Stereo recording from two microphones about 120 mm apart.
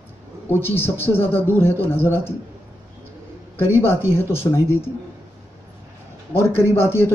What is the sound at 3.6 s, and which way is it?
Speech, 20° left (ahead or behind).